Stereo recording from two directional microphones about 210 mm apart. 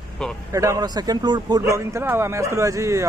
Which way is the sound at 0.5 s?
15° right (ahead or behind).